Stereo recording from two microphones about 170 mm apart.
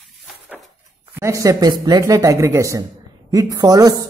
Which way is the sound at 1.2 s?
20° right (ahead or behind).